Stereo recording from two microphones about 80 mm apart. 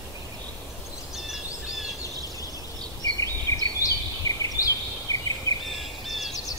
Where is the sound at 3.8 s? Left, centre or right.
Left.